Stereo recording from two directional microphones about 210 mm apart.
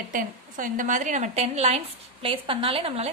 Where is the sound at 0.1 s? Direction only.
40° right (ahead or behind).